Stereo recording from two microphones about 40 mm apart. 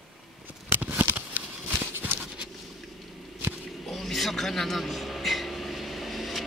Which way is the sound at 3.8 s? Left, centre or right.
Centre.